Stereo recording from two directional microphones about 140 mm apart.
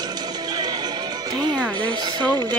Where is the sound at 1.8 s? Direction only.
30° right (ahead or behind).